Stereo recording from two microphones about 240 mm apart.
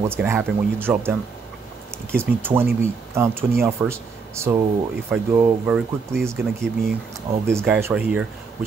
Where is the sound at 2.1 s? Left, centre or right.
Centre.